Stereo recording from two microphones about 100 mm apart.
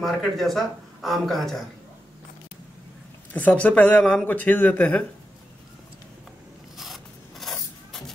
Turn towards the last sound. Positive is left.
turn(degrees=0)  # may be behind; listen again after turning